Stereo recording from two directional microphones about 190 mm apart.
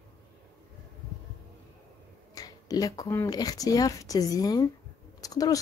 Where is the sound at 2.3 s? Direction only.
20° left (ahead or behind).